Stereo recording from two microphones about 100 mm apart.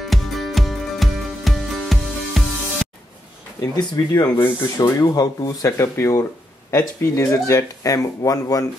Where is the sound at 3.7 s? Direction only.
45° left (ahead or behind).